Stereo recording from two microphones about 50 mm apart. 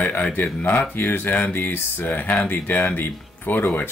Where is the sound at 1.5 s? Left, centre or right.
Left.